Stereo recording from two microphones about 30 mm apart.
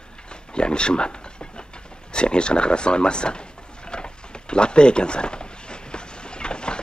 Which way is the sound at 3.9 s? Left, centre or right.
Left.